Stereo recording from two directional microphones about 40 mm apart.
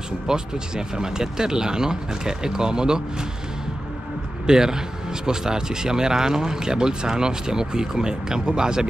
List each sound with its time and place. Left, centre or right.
0.3 s speech: centre
4.5 s speech: centre